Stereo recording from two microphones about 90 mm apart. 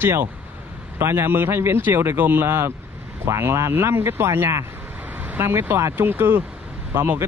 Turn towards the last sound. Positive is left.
turn(degrees=-25)  # may be behind; listen again after turning